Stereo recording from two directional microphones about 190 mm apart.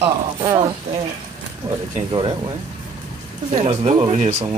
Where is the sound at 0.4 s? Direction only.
25° right (ahead or behind).